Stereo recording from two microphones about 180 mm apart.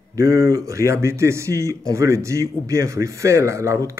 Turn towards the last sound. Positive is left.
turn(degrees=-15)  # may be behind; listen again after turning